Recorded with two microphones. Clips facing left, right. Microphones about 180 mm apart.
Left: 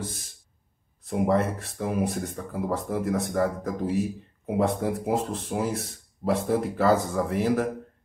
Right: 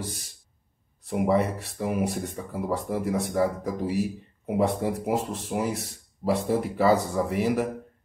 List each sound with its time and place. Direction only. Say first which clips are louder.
1.0 s speech: even; 5° right (ahead or behind)